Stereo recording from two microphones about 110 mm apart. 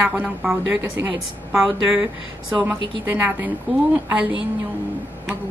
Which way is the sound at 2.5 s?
20° right (ahead or behind).